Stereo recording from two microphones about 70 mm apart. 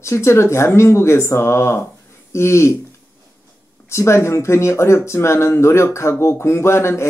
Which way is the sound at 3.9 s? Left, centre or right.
Left.